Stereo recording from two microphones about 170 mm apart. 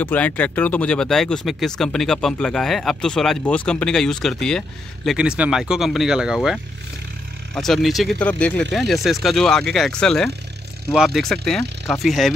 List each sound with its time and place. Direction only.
0.0 s speech: 10° left (ahead or behind)